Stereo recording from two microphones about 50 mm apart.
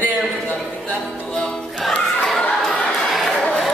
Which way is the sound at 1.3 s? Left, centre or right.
Centre.